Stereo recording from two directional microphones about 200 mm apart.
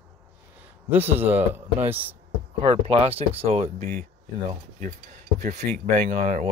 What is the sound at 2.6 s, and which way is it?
Speech, 25° right (ahead or behind).